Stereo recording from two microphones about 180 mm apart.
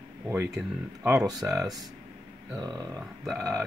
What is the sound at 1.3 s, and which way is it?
Speech, 20° right (ahead or behind).